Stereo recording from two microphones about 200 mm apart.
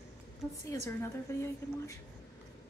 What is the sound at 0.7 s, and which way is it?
A woman's voice, 15° left (ahead or behind).